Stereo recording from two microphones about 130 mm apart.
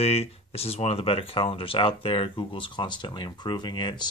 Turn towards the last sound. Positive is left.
turn(degrees=35)  # may be behind; listen again after turning